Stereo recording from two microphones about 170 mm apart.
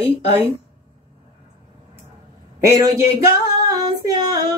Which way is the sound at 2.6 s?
20° right (ahead or behind).